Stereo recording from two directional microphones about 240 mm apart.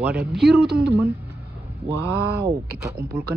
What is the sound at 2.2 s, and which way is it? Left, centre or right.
Speech, right.